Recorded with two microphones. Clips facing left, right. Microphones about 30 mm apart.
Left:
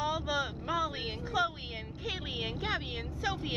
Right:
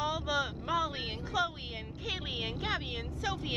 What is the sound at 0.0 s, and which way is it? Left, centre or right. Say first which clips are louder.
Vehicle: even; centre.